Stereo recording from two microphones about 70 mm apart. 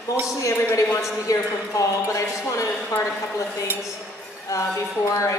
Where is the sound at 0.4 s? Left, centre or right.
Left.